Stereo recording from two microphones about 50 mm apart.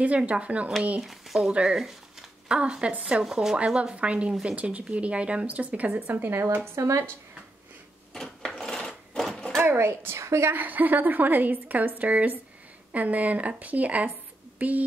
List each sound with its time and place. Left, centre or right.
0.2 s speech: right
3.3 s speech: centre
3.5 s speech: right
6.1 s speech: right
6.6 s speech: right
8.1 s a sound: centre
8.5 s filing: centre
9.6 s a woman's voice: right
10.5 s a woman's voice: right